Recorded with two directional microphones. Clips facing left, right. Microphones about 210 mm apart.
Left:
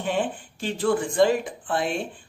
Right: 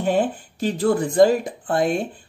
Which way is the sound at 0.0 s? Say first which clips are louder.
Right 6 dB; 40° right (ahead or behind).